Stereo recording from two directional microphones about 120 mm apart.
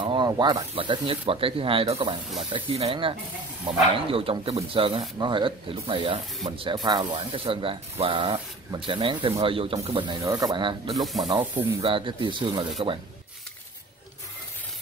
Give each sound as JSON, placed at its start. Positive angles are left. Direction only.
{"t": 0.0, "sound": "snake", "side_deg": -40}
{"t": 0.3, "sound": "speech", "side_deg": -30}
{"t": 0.7, "sound": "speech", "side_deg": -50}
{"t": 10.2, "sound": "speech", "side_deg": -30}
{"t": 11.8, "sound": "speech", "side_deg": -45}